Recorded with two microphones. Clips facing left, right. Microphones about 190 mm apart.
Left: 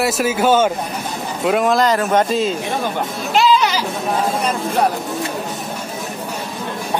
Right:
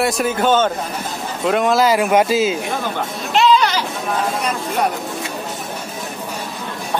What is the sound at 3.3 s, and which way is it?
Goat, centre (ahead or behind).